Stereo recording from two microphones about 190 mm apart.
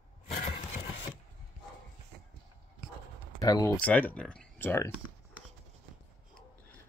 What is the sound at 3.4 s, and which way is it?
Speech, 20° left (ahead or behind).